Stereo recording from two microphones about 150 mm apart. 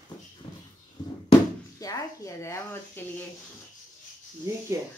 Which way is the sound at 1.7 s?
20° left (ahead or behind).